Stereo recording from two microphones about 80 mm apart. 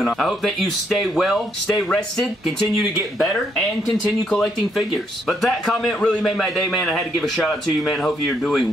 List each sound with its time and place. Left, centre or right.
0.0 s a man's voice: centre
4.3 s a man's voice: centre